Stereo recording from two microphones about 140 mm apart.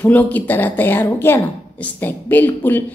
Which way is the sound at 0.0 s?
10° left (ahead or behind).